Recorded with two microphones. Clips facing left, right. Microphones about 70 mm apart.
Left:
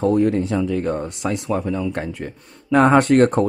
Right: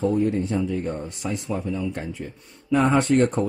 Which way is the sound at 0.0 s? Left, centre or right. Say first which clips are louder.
Left 5 dB; left.